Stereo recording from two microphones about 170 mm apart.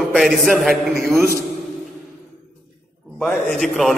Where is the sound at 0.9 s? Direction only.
15° right (ahead or behind).